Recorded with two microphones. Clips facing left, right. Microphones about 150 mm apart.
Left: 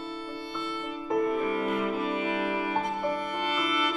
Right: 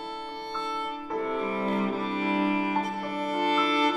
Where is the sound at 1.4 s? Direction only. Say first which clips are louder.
Even; 30° right (ahead or behind).